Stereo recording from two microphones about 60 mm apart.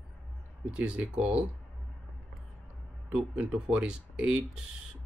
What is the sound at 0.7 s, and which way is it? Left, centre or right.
Speech, right.